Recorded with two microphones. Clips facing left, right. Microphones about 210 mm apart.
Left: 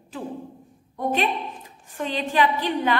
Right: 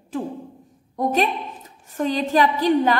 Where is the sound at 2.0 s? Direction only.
40° right (ahead or behind).